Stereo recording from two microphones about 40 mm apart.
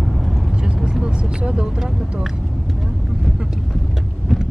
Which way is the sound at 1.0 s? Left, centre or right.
Right.